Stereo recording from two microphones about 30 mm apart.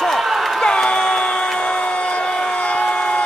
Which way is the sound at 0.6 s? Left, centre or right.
Left.